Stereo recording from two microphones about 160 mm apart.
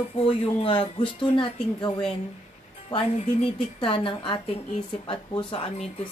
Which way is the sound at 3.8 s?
35° left (ahead or behind).